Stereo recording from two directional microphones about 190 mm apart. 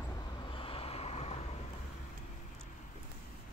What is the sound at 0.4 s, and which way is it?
Vehicle, 30° left (ahead or behind).